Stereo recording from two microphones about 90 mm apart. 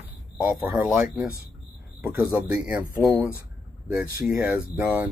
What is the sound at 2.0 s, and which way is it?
Speech, 30° right (ahead or behind).